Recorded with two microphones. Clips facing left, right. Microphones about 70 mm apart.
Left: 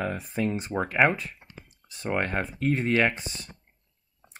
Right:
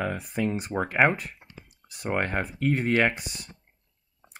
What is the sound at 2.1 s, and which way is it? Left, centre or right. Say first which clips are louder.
Speech: even; right.